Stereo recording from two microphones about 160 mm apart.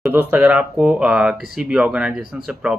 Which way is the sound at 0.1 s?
10° right (ahead or behind).